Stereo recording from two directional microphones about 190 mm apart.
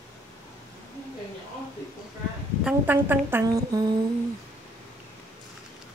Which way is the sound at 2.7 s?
10° right (ahead or behind).